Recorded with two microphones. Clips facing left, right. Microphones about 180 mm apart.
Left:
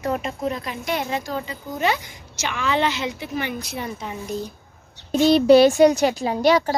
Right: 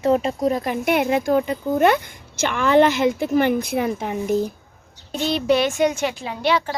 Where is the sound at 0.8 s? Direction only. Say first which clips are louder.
Right 7 dB; 60° right (ahead or behind).